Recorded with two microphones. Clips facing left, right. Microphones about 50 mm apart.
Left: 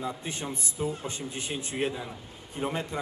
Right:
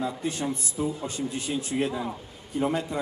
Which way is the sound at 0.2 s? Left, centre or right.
Left.